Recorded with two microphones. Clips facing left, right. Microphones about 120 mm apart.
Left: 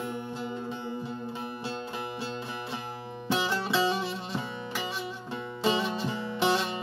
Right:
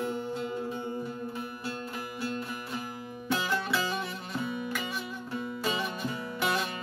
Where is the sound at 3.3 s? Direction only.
25° left (ahead or behind).